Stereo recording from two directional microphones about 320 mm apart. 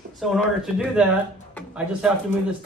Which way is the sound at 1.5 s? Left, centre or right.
Centre.